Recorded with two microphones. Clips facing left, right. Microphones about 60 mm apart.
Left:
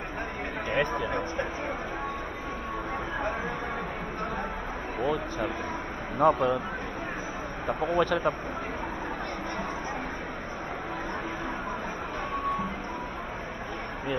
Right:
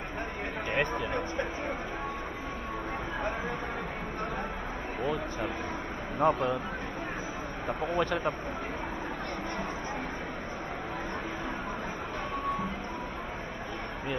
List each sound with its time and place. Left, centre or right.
0.7 s speech: left
5.0 s speech: left
7.6 s speech: left